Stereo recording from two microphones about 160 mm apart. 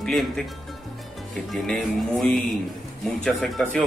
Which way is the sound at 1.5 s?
Centre (ahead or behind).